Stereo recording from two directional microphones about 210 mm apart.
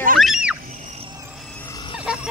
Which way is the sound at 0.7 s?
35° right (ahead or behind).